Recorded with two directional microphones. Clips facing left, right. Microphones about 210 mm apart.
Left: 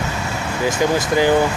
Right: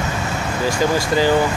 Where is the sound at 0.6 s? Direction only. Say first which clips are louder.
Left 1 dB; 20° left (ahead or behind).